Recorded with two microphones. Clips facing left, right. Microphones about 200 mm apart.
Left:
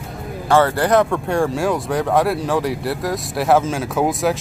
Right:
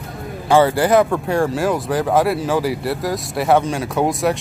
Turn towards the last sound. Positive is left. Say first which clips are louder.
# even
turn(degrees=0)  # may be behind; listen again after turning